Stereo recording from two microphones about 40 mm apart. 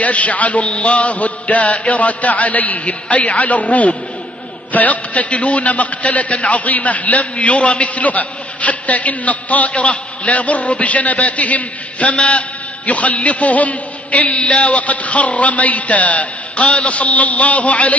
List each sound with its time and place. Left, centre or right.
0.0 s a man's voice: left